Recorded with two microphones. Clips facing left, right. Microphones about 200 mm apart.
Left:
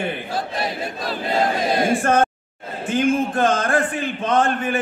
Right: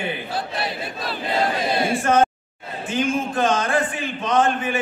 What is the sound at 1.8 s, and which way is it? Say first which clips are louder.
A man's voice: even; 50° left (ahead or behind).